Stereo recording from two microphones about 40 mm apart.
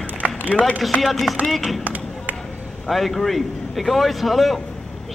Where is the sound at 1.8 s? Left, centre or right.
Right.